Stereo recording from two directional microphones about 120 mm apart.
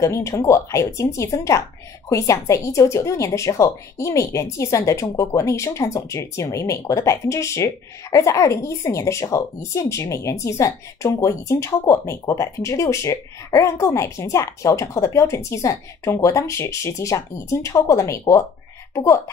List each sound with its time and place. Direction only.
0.0 s speech: 25° left (ahead or behind)